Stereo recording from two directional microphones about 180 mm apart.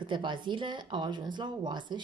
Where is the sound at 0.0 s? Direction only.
25° right (ahead or behind).